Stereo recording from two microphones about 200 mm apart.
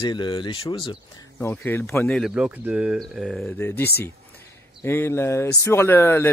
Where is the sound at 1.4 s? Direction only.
10° left (ahead or behind).